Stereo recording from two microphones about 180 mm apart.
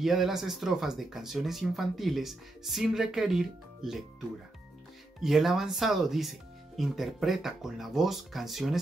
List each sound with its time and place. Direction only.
0.0 s speech: centre (ahead or behind)
5.2 s speech: centre (ahead or behind)